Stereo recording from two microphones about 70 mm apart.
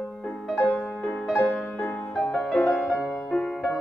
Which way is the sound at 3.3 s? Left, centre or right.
Centre.